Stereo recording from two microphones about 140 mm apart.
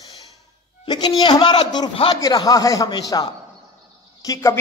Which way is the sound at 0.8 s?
35° left (ahead or behind).